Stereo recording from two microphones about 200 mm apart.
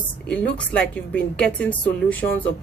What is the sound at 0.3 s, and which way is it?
A woman's voice, 5° left (ahead or behind).